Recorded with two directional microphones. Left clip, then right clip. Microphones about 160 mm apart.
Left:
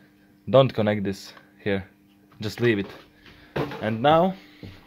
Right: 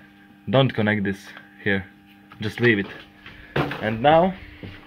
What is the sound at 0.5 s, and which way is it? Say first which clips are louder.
Speech: left 2 dB; 20° left (ahead or behind).